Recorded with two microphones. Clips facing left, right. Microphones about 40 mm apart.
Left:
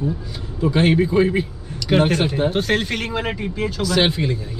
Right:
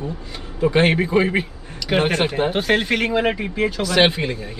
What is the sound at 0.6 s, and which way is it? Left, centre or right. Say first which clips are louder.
A man's voice: even; right.